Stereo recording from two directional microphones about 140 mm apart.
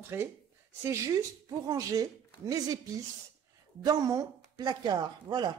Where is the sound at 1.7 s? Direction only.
25° right (ahead or behind).